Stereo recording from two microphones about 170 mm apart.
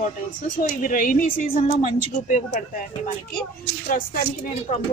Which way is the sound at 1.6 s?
40° left (ahead or behind).